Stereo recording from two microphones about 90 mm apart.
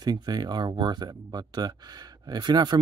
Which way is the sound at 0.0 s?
50° right (ahead or behind).